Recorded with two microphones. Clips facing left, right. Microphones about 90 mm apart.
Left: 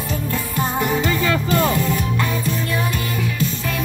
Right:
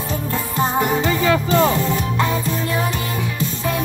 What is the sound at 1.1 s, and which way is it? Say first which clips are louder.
Music: right 2 dB; 15° right (ahead or behind).